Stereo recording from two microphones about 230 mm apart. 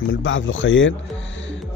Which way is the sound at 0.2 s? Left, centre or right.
Left.